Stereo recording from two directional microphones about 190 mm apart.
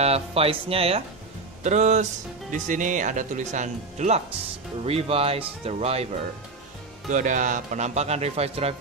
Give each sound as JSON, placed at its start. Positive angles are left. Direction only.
{"t": 0.0, "sound": "speech", "side_deg": -30}
{"t": 7.1, "sound": "speech", "side_deg": -40}